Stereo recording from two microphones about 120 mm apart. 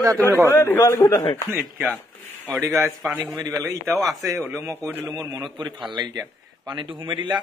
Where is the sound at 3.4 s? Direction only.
25° right (ahead or behind).